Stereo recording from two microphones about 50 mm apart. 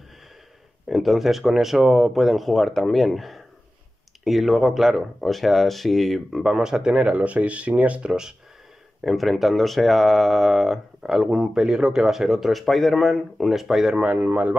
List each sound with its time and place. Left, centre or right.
0.8 s speech: centre
6.4 s speech: centre
9.0 s speech: centre
13.9 s speech: right